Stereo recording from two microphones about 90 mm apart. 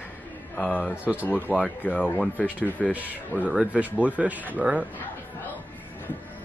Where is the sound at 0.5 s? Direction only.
10° left (ahead or behind).